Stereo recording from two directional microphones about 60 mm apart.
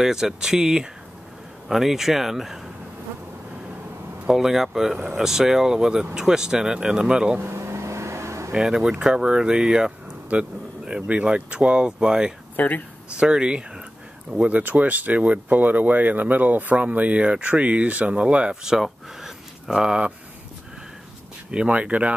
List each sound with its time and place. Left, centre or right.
0.0 s speech: centre
4.3 s speech: centre
7.3 s vehicle: right
8.5 s speech: centre
10.3 s speech: right
12.5 s speech: left
13.1 s speech: centre
18.6 s speech: centre
21.5 s speech: centre